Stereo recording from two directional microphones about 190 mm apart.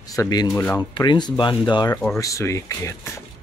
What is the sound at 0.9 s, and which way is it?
Speech, 25° left (ahead or behind).